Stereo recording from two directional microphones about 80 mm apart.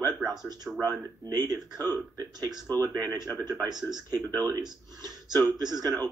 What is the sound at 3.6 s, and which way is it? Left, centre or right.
Speech, right.